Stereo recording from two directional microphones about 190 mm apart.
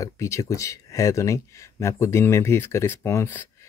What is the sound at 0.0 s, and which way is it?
Speech, 15° left (ahead or behind).